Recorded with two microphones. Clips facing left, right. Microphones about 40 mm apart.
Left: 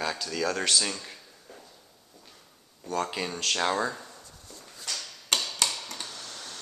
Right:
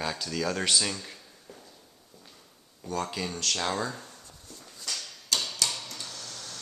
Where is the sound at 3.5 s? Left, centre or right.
Left.